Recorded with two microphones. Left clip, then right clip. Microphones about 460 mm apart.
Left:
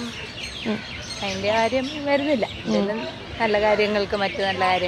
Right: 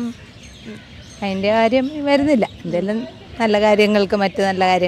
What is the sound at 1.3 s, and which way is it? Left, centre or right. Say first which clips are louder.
Speech: right 5 dB; right.